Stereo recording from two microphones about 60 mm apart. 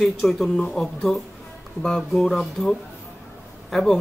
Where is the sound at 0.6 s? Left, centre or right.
Centre.